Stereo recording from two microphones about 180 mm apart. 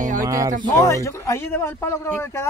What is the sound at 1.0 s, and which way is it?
A man's voice, 15° left (ahead or behind).